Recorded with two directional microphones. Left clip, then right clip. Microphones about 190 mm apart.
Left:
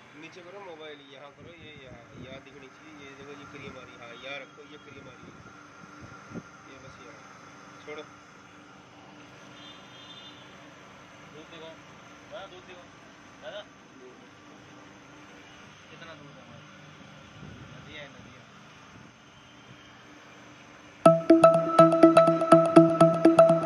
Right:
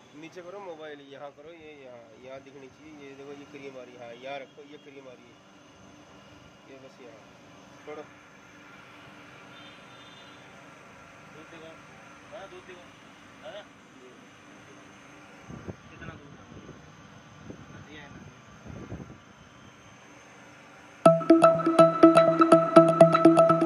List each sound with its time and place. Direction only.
0.8 s speech: 50° right (ahead or behind)
4.2 s speech: 35° right (ahead or behind)
21.0 s music: centre (ahead or behind)